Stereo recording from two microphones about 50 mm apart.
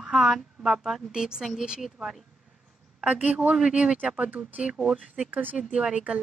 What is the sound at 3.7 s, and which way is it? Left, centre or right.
Speech, centre.